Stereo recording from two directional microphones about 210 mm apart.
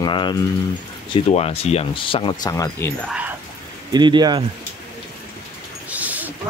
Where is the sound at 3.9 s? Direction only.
20° right (ahead or behind).